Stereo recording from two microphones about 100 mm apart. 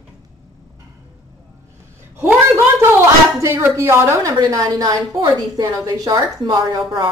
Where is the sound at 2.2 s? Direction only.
25° right (ahead or behind).